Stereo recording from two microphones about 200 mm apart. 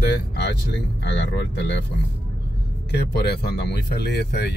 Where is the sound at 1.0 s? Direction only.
60° left (ahead or behind).